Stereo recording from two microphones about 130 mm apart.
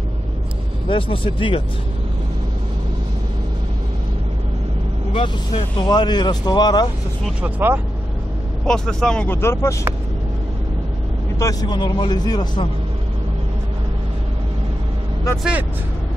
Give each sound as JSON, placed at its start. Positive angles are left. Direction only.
{"t": 0.8, "sound": "speech", "side_deg": 40}
{"t": 5.1, "sound": "speech", "side_deg": 40}
{"t": 7.2, "sound": "speech", "side_deg": -10}
{"t": 8.6, "sound": "speech", "side_deg": 5}
{"t": 9.4, "sound": "speech", "side_deg": 20}
{"t": 11.3, "sound": "speech", "side_deg": 30}